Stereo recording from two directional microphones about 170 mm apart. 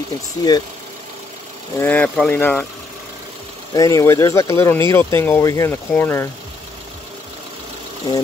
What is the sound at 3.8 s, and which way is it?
Speech, 20° left (ahead or behind).